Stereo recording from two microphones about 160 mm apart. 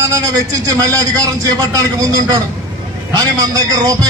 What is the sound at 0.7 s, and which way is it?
A man's voice, 20° right (ahead or behind).